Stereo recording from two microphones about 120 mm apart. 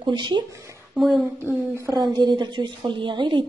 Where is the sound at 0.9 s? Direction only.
Centre (ahead or behind).